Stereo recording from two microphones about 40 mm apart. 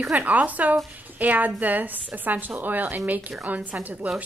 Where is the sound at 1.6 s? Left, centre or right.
Right.